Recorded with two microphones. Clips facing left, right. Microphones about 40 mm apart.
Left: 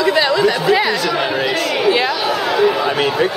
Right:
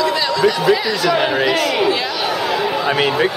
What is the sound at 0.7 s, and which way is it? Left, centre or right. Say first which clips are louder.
Speech: even; centre.